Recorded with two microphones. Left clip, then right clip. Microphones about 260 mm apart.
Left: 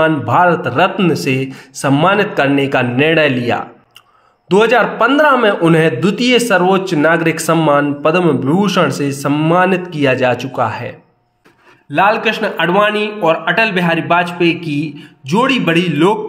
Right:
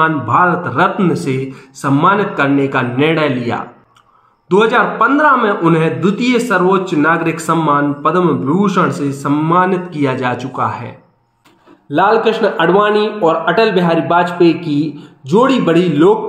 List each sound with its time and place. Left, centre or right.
0.0 s a man's voice: left
11.9 s a man's voice: left